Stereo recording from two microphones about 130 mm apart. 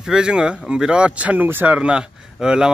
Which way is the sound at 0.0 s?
5° right (ahead or behind).